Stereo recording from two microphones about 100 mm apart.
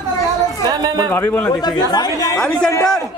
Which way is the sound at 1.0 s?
20° left (ahead or behind).